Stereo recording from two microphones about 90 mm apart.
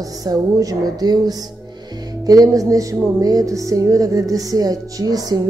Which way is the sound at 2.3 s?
40° right (ahead or behind).